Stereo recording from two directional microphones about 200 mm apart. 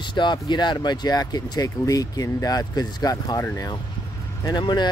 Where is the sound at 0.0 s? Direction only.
25° left (ahead or behind).